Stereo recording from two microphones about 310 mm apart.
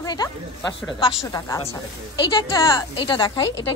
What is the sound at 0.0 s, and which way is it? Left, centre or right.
Speech, centre.